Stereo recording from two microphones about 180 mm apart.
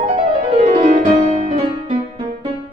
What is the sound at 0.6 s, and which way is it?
Music, 40° right (ahead or behind).